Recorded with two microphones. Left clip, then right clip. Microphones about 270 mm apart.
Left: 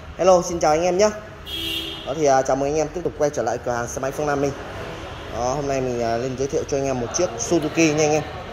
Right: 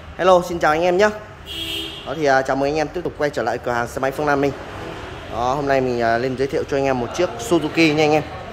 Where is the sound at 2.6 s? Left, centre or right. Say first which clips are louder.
Right 2 dB; centre.